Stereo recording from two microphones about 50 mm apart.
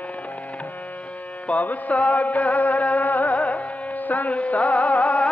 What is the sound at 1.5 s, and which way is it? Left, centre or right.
Music, left.